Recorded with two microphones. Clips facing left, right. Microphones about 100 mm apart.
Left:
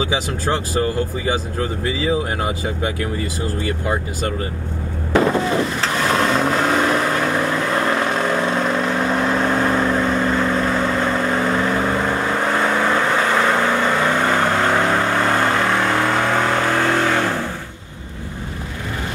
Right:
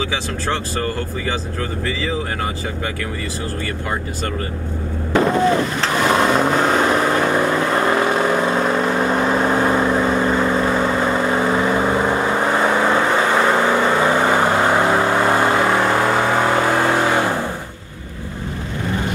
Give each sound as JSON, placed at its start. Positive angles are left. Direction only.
{"t": 0.0, "sound": "speech", "side_deg": 15}
{"t": 5.8, "sound": "vehicle", "side_deg": -5}